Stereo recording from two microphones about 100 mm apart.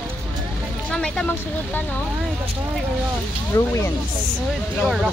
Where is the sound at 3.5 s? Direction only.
30° left (ahead or behind).